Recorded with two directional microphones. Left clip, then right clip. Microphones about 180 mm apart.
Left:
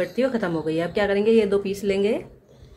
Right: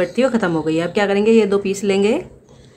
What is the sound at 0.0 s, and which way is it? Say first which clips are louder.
Speech: right 6 dB; 20° right (ahead or behind).